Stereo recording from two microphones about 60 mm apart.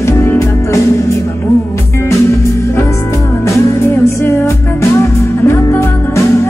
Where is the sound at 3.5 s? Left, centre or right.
Left.